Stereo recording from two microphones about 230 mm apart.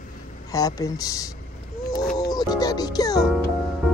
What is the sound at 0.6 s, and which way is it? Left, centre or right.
Speech, centre.